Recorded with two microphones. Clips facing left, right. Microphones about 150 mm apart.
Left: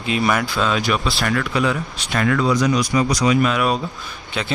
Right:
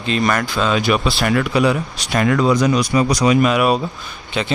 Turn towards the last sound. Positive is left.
turn(degrees=0)  # may be behind; listen again after turning